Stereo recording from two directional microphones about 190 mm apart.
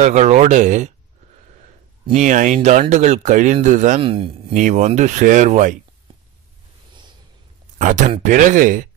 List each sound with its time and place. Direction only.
0.0 s speech: 40° right (ahead or behind)
2.1 s speech: 40° right (ahead or behind)
4.0 s speech: 30° right (ahead or behind)
4.6 s speech: 40° right (ahead or behind)
7.8 s speech: 40° right (ahead or behind)